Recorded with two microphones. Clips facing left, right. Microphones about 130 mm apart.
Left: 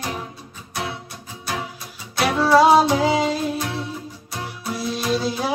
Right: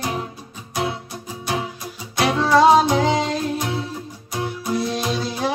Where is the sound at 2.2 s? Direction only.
5° left (ahead or behind).